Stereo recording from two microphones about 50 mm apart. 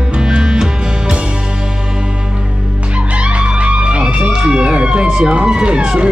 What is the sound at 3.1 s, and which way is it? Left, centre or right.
Music, right.